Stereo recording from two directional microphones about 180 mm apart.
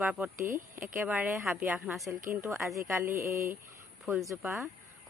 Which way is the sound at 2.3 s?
15° right (ahead or behind).